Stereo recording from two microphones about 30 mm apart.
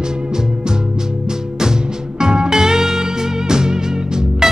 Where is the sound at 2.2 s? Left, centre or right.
Right.